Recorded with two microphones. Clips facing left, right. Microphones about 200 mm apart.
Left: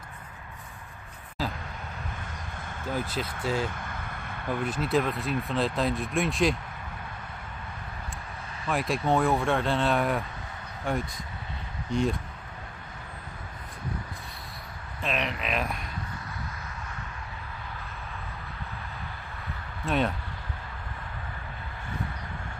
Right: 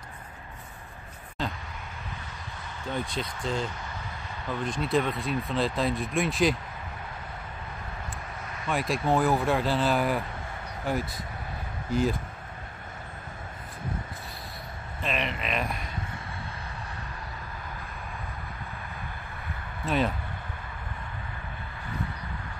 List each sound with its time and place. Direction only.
1.4 s vehicle: 5° left (ahead or behind)
2.9 s speech: 5° left (ahead or behind)
3.7 s vehicle: 55° left (ahead or behind)
4.5 s speech: 5° left (ahead or behind)
8.6 s speech: centre (ahead or behind)
15.0 s speech: centre (ahead or behind)
19.8 s speech: centre (ahead or behind)